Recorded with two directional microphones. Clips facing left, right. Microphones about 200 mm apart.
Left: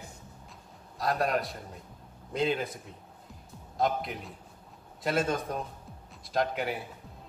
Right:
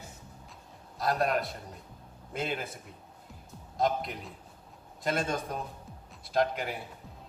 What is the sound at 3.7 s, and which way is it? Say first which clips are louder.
Speech: even; centre (ahead or behind).